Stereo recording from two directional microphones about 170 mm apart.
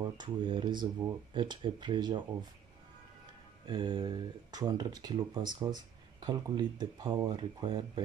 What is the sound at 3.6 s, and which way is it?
Speech, 30° right (ahead or behind).